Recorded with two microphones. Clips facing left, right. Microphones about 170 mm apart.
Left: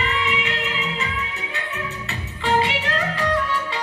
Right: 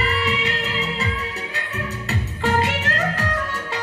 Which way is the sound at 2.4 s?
45° right (ahead or behind).